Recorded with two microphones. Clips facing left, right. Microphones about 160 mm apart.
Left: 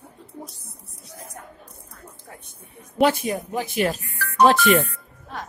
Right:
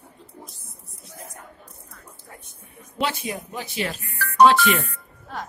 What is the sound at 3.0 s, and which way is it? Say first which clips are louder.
Speech: left 7 dB; 50° left (ahead or behind).